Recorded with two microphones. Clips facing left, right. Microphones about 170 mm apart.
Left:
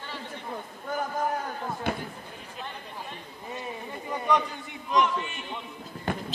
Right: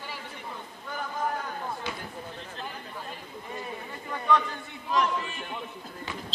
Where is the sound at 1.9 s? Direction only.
55° left (ahead or behind).